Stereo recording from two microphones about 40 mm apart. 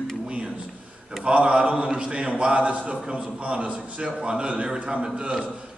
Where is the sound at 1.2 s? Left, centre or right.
Right.